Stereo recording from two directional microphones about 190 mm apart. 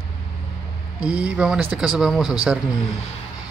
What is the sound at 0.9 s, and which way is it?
Speech, 5° right (ahead or behind).